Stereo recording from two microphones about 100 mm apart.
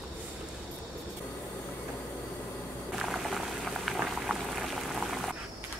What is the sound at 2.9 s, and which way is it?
Boiling, centre (ahead or behind).